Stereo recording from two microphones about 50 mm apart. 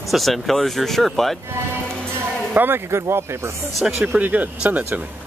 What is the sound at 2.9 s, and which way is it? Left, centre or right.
Speech, right.